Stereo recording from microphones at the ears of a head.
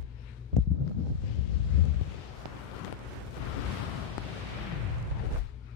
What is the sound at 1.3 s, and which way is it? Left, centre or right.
Wind noise, left.